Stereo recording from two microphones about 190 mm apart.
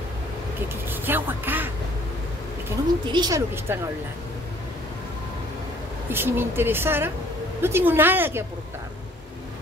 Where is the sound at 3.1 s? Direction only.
20° right (ahead or behind).